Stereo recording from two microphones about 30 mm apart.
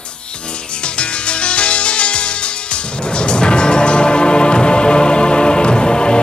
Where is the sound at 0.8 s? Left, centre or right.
Left.